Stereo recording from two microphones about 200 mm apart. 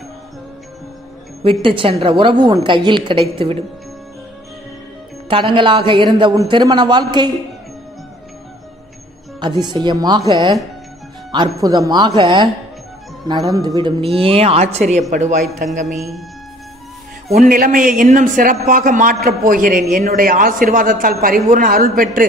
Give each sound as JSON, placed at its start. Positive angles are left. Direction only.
{"t": 1.4, "sound": "a woman's voice", "side_deg": -25}
{"t": 5.3, "sound": "a woman's voice", "side_deg": -25}
{"t": 9.4, "sound": "a woman's voice", "side_deg": -20}
{"t": 17.3, "sound": "a man's voice", "side_deg": -45}